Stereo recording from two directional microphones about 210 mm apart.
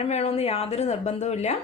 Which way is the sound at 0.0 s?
30° left (ahead or behind).